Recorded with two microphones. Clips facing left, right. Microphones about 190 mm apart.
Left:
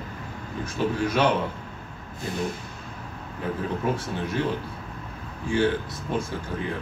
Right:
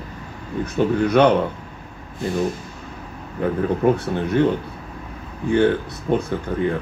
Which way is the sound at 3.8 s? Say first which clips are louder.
Right 9 dB; 55° right (ahead or behind).